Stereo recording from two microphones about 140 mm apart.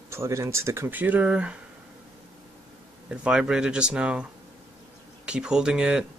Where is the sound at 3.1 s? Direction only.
10° right (ahead or behind).